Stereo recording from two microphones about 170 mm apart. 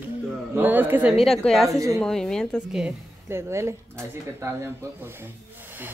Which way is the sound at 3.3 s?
15° right (ahead or behind).